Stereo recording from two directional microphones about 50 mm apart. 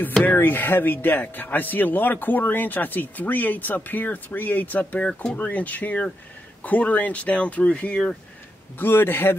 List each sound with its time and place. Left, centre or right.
0.4 s speech: left
5.0 s speech: left
8.7 s a man's voice: left